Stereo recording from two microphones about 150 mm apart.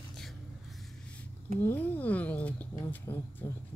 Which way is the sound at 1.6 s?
10° left (ahead or behind).